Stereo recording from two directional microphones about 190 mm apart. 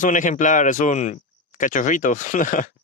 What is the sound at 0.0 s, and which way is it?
Speech, 40° left (ahead or behind).